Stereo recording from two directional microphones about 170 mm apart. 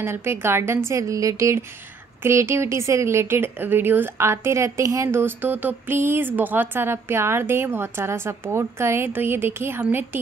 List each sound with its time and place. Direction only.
0.0 s a woman's voice: 15° right (ahead or behind)